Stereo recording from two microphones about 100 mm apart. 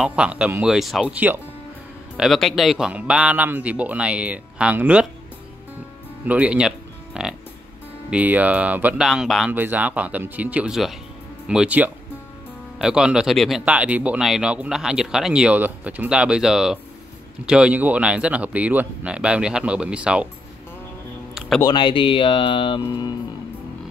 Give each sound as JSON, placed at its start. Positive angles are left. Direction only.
{"t": 0.0, "sound": "a man's voice", "side_deg": -10}
{"t": 1.0, "sound": "speech", "side_deg": -15}
{"t": 2.1, "sound": "a man's voice", "side_deg": 0}
{"t": 2.9, "sound": "speech", "side_deg": -10}
{"t": 6.2, "sound": "speech", "side_deg": -15}
{"t": 9.0, "sound": "a man's voice", "side_deg": -5}
{"t": 9.5, "sound": "speech", "side_deg": -20}
{"t": 13.7, "sound": "speech", "side_deg": -15}
{"t": 21.6, "sound": "speech", "side_deg": 55}
{"t": 22.8, "sound": "speech", "side_deg": 40}